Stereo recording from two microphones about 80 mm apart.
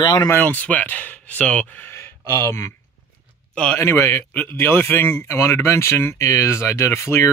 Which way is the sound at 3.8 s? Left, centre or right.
Left.